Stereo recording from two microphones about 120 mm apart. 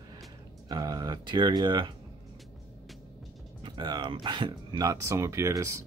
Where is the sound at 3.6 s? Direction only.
40° right (ahead or behind).